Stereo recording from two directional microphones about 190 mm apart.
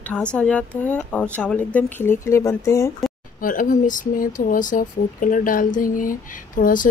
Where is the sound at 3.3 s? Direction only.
45° left (ahead or behind).